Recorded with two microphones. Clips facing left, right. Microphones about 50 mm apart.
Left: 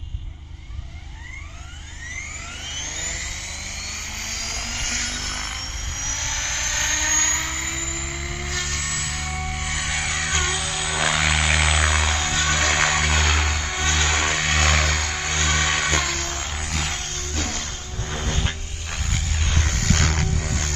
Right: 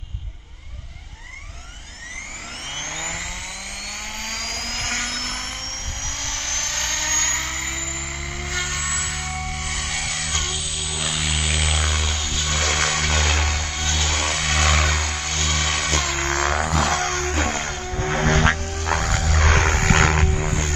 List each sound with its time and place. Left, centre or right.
4.8 s music: right
5.1 s music: centre
6.2 s vehicle: centre
9.6 s music: centre
10.5 s vehicle: left
11.3 s a sound: left
12.5 s vehicle: centre
13.7 s vehicle: left; by 15.2 s centre
15.2 s music: left
16.3 s a sound: right
17.1 s music: right
17.4 s vehicle: right
17.6 s a sound: right
19.5 s vehicle: right